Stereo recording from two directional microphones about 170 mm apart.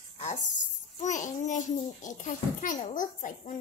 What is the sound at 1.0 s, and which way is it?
A child's voice, 45° left (ahead or behind).